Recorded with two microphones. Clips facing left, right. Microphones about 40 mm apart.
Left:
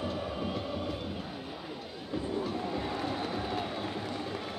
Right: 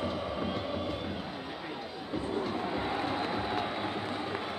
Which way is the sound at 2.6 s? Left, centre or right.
Right.